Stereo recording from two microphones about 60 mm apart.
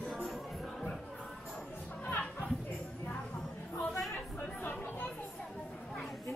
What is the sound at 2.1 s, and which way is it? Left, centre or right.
Music, left.